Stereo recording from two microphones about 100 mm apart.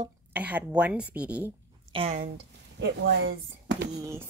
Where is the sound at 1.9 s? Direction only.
55° right (ahead or behind).